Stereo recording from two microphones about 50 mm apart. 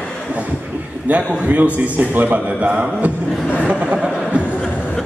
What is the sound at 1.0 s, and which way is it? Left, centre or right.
A man's voice, right.